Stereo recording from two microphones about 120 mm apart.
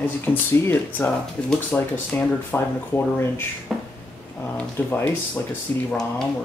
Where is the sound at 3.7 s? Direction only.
Centre (ahead or behind).